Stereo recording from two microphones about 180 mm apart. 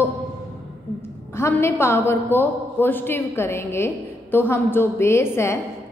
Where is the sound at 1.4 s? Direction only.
15° left (ahead or behind).